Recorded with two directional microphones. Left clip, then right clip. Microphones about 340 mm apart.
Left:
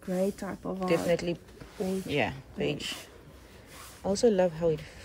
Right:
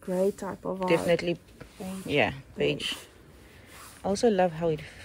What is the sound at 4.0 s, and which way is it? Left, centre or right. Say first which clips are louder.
Speech: right 1 dB; centre.